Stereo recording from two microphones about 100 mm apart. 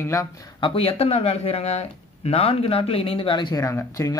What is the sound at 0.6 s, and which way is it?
Speech, 70° left (ahead or behind).